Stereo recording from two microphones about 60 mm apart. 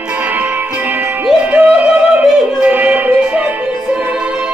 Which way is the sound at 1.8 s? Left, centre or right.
Right.